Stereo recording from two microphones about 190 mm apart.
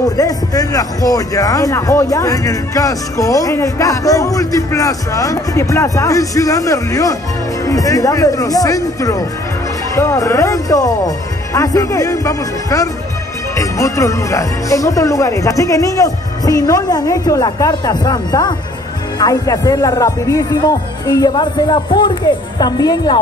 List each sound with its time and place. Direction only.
0.0 s speech: 20° left (ahead or behind)